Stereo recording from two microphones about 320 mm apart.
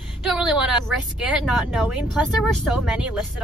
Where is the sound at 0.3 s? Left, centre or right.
Centre.